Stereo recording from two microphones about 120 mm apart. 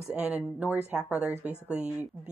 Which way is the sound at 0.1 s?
5° right (ahead or behind).